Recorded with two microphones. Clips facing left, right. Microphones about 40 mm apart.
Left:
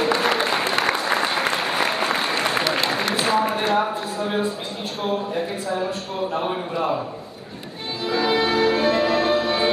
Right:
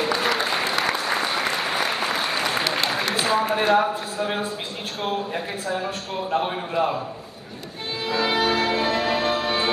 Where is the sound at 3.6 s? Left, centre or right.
Centre.